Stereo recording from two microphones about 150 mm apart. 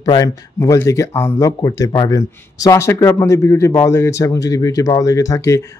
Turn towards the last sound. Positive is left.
turn(degrees=20)  # may be behind; listen again after turning